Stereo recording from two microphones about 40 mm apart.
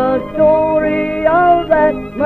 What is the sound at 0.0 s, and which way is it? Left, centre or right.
Music, centre.